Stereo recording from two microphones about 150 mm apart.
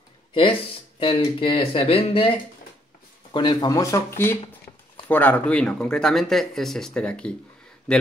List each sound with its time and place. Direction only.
0.3 s speech: 35° left (ahead or behind)
3.3 s speech: 30° left (ahead or behind); by 8.0 s 5° left (ahead or behind)